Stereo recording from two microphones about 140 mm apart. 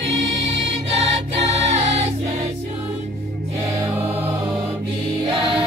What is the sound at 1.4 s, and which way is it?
Music, 50° right (ahead or behind).